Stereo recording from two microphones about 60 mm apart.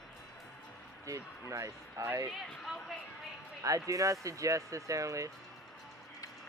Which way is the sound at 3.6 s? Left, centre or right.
Right.